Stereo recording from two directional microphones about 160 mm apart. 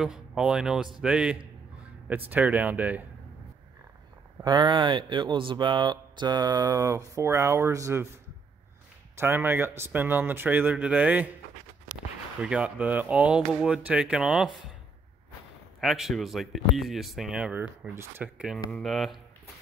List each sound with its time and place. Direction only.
0.0 s a man's voice: 5° right (ahead or behind)
4.4 s speech: 25° right (ahead or behind)
9.1 s speech: 15° right (ahead or behind)
12.4 s speech: 5° right (ahead or behind)
15.8 s a man's voice: centre (ahead or behind)